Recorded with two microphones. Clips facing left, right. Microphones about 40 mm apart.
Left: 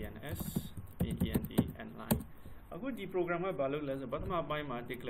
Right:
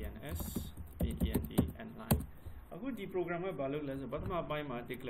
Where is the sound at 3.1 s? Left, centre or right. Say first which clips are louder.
Left 3 dB; centre.